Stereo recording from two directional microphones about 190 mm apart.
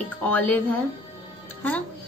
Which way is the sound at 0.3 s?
10° left (ahead or behind).